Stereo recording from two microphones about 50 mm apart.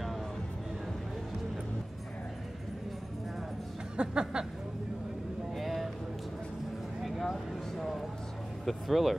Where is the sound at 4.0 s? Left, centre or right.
Centre.